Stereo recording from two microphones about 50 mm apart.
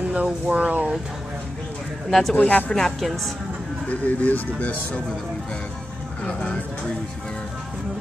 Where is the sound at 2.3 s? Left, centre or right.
Left.